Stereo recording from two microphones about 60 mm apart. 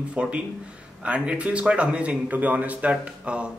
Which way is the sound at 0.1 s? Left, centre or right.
Centre.